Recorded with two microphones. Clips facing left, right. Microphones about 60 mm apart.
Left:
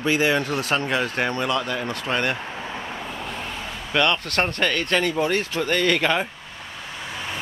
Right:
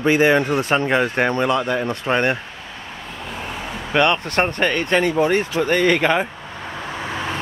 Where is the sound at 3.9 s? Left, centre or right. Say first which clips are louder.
Right 4 dB; right.